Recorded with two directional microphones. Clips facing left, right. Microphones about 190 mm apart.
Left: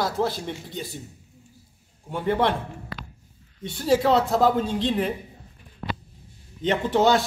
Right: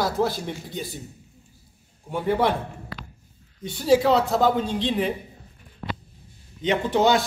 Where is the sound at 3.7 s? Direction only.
Centre (ahead or behind).